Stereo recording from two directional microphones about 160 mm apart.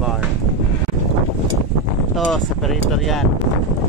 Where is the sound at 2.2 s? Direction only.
Centre (ahead or behind).